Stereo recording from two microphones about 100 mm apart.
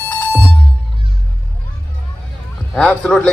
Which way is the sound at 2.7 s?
10° left (ahead or behind).